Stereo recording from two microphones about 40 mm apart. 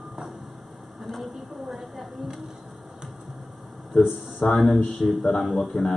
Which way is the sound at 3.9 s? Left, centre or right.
Centre.